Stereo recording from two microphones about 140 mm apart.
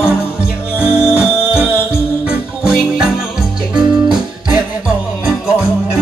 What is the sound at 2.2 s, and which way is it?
Jingle bell, 5° right (ahead or behind).